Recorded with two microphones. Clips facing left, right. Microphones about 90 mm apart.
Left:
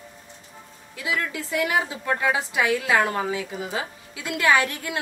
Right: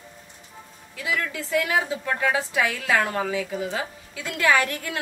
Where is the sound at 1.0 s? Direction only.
20° left (ahead or behind).